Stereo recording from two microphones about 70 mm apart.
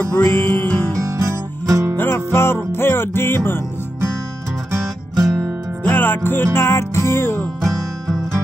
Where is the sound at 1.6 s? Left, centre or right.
Right.